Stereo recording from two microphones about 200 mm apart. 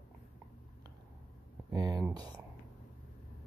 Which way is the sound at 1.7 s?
20° right (ahead or behind).